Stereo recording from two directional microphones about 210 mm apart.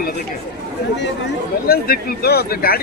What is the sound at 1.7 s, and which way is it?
Speech, 45° left (ahead or behind).